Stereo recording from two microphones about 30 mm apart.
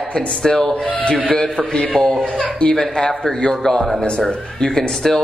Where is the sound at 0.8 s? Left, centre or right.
Left.